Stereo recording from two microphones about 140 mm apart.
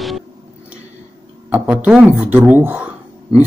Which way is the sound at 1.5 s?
5° right (ahead or behind).